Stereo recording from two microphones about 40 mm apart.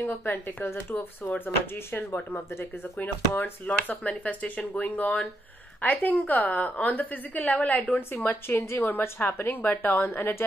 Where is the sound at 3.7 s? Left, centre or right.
Left.